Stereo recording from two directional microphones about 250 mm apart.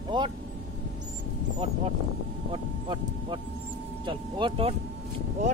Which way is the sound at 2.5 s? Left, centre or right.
Centre.